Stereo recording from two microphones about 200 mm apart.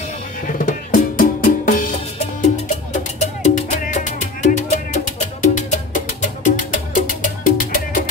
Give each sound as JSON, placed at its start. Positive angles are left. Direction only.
{"t": 0.5, "sound": "music", "side_deg": 40}